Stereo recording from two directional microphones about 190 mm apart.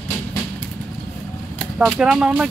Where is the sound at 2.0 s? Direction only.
5° right (ahead or behind).